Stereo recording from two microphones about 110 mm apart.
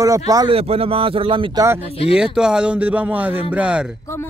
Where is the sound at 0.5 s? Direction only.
60° right (ahead or behind).